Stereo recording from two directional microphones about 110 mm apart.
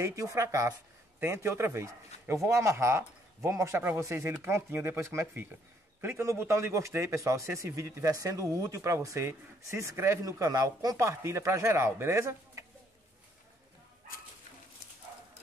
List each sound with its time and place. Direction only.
0.0 s a man's voice: 30° right (ahead or behind)